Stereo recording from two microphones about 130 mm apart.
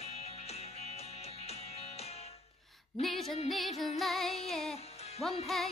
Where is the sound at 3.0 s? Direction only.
Centre (ahead or behind).